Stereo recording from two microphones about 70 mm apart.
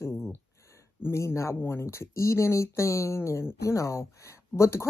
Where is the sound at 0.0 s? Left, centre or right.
Left.